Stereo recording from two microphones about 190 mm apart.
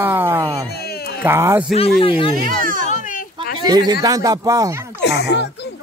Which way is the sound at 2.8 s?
40° left (ahead or behind).